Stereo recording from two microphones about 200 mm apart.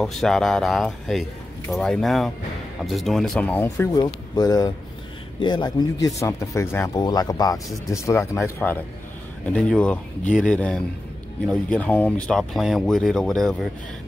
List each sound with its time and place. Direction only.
0.0 s a man's voice: centre (ahead or behind)